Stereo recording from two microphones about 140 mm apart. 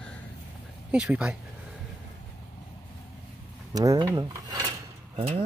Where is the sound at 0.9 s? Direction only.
5° right (ahead or behind).